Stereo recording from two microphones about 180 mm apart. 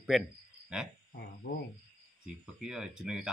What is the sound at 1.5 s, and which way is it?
Cricket, 55° left (ahead or behind).